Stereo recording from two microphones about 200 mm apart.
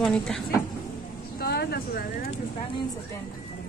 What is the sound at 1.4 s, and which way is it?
Speech, 50° left (ahead or behind).